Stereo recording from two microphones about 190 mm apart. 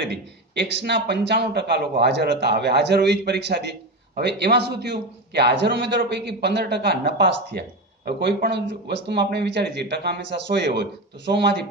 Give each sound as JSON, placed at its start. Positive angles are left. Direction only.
{"t": 0.6, "sound": "a man's voice", "side_deg": -65}